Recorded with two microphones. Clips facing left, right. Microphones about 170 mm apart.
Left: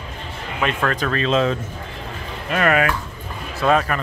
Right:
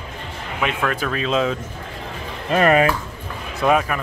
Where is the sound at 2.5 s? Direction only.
30° right (ahead or behind).